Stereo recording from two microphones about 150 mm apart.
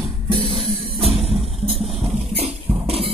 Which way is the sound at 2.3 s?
40° right (ahead or behind).